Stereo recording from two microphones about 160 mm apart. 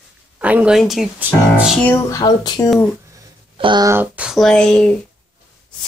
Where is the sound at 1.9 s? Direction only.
20° left (ahead or behind).